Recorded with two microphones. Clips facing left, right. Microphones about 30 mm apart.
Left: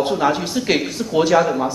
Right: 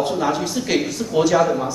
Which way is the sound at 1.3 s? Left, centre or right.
Centre.